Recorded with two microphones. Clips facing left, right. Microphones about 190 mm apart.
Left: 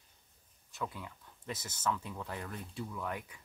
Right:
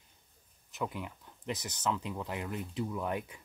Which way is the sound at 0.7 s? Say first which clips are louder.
Right 4 dB; 20° right (ahead or behind).